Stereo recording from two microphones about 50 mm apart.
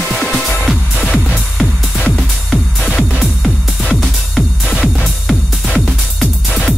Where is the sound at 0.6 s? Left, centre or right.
Centre.